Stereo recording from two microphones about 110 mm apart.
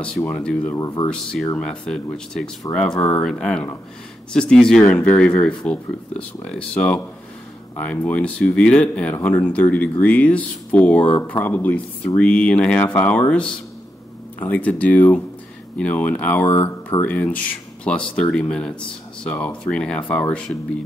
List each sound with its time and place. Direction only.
0.2 s speech: 10° left (ahead or behind)
0.7 s speech: 35° left (ahead or behind)
1.0 s speech: 10° left (ahead or behind)
16.4 s speech: 35° left (ahead or behind)
17.0 s speech: 15° left (ahead or behind)